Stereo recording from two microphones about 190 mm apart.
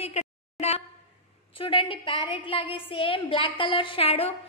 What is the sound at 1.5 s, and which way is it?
A woman's voice, 30° left (ahead or behind).